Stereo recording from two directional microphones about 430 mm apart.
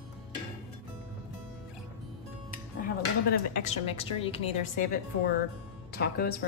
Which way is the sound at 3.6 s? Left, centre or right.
Centre.